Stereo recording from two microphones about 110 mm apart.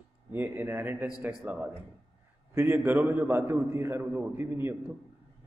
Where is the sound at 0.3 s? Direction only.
20° right (ahead or behind).